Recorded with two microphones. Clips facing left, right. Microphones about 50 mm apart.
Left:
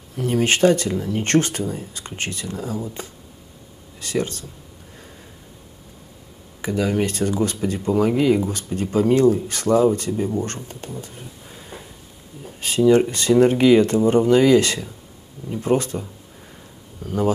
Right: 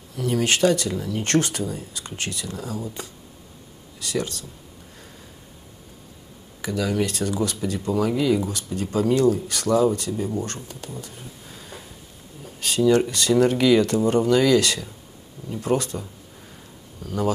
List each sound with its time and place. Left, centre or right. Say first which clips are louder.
0.1 s speech: left 3 dB; left
6.6 s speech: left 3 dB; left
11.4 s a sound: left 2 dB; left
12.4 s speech: left 3 dB; left